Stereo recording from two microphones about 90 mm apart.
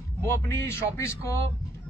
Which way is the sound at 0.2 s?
30° left (ahead or behind).